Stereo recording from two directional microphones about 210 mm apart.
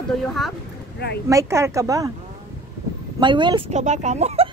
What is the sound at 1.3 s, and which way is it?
Speech, 15° right (ahead or behind).